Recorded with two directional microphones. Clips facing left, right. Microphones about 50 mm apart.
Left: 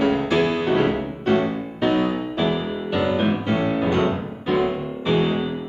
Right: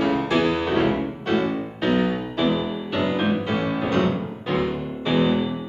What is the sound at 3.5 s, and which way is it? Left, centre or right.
Music, centre.